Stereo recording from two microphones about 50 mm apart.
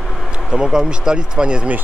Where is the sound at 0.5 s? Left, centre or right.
Centre.